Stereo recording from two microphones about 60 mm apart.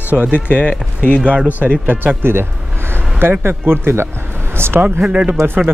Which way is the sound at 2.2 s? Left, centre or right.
Right.